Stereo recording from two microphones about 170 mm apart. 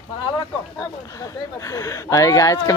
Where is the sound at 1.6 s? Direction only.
20° left (ahead or behind).